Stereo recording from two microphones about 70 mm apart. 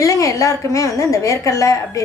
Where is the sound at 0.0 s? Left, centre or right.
Left.